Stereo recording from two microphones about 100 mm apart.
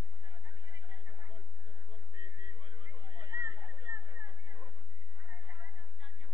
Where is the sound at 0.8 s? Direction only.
50° right (ahead or behind).